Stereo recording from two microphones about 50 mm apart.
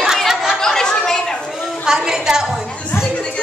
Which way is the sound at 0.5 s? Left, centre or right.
Centre.